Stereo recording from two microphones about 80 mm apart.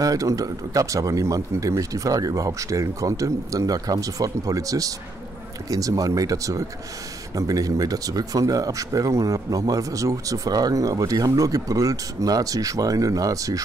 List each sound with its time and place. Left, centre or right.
0.0 s speech: right